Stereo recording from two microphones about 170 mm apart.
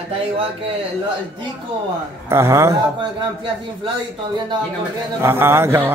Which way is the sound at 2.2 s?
15° right (ahead or behind).